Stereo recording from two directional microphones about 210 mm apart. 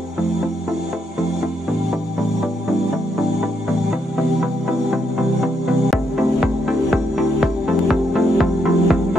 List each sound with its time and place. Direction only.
4.4 s music: centre (ahead or behind)